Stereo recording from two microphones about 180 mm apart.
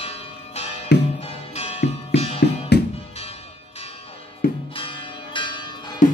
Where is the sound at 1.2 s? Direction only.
35° left (ahead or behind).